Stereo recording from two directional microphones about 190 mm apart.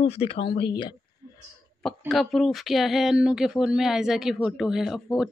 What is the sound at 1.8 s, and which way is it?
A woman's voice, centre (ahead or behind).